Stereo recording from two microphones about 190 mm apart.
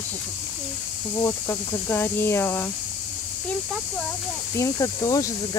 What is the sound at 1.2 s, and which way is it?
Speech, 15° left (ahead or behind).